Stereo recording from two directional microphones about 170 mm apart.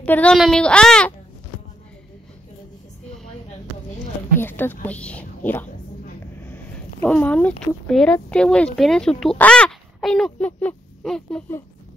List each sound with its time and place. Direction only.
0.0 s a child's voice: 10° left (ahead or behind)
4.4 s a woman's voice: 10° left (ahead or behind)